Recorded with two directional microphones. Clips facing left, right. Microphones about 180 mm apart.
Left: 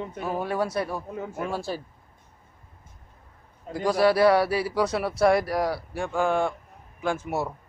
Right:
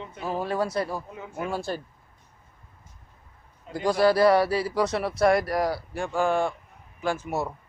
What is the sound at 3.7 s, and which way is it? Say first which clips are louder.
A man's voice: even; centre (ahead or behind).